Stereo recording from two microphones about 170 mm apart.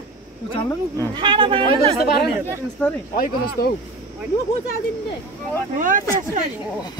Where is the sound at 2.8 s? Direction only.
10° left (ahead or behind).